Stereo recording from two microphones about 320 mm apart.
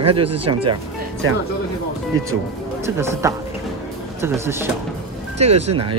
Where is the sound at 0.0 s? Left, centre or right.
Centre.